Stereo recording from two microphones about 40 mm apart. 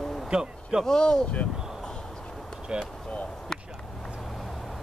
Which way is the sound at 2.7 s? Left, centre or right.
Right.